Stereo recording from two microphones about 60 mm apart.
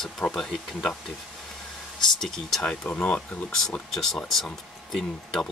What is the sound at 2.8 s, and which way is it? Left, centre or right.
Speech, left.